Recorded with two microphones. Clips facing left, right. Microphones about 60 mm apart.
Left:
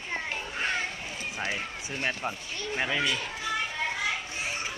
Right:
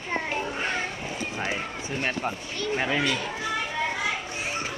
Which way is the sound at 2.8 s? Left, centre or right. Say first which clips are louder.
Right 2 dB; right.